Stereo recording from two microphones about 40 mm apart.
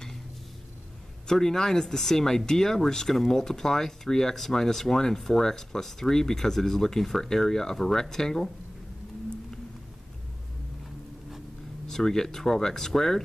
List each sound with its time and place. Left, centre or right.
1.2 s speech: centre
11.9 s speech: centre